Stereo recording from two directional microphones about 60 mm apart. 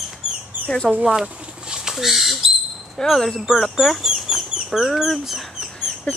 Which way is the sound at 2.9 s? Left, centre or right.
Centre.